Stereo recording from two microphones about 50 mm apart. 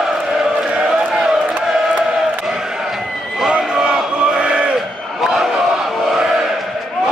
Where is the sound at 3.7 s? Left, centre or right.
Centre.